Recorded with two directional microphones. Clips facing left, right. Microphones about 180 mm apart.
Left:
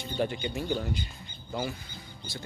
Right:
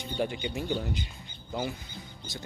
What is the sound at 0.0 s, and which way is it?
Speech, 15° right (ahead or behind).